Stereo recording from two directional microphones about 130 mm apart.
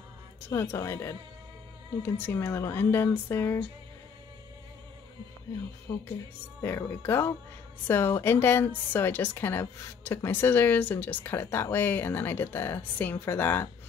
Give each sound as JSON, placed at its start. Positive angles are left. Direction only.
{"t": 0.5, "sound": "a woman's voice", "side_deg": 20}
{"t": 5.9, "sound": "speech", "side_deg": 35}
{"t": 6.6, "sound": "a woman's voice", "side_deg": 20}